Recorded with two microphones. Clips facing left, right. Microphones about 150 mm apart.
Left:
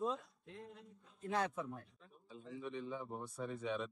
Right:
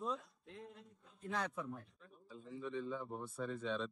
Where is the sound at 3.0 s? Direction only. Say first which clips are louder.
Right 1 dB; 5° left (ahead or behind).